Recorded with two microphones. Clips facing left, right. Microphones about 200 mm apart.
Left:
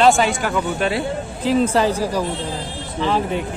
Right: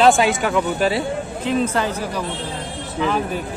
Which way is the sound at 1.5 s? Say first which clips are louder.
Left 4 dB; 30° left (ahead or behind).